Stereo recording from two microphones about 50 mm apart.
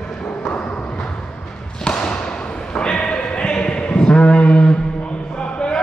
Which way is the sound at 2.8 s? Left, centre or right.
Centre.